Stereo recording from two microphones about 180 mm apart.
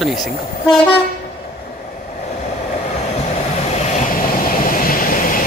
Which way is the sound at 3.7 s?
45° left (ahead or behind).